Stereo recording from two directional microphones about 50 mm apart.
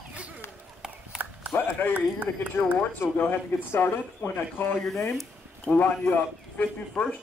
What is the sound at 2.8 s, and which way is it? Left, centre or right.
Speech, left.